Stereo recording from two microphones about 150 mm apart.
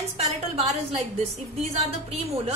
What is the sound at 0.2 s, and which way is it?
A woman's voice, 45° right (ahead or behind).